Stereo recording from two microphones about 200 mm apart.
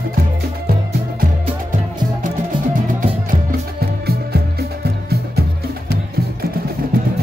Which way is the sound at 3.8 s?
50° right (ahead or behind).